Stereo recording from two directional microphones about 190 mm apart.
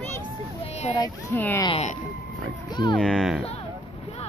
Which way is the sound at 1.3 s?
10° left (ahead or behind).